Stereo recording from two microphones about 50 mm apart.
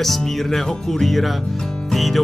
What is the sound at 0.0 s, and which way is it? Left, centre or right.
Music, centre.